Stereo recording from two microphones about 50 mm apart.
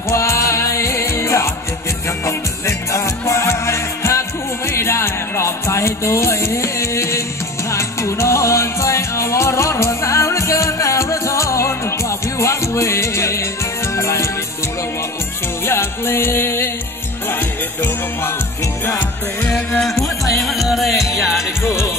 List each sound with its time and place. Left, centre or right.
0.1 s music: left
2.2 s music: left
15.6 s music: left
20.3 s music: centre